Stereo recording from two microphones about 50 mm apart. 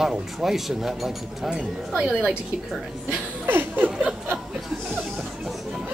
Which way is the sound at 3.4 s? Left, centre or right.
Right.